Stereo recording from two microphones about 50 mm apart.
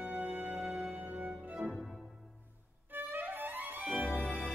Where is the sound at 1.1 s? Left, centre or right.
Right.